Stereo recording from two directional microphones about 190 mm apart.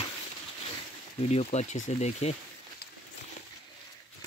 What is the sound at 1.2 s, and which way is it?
Speech, 35° left (ahead or behind).